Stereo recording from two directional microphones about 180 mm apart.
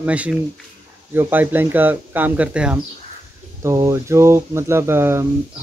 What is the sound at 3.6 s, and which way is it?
Speech, 15° right (ahead or behind).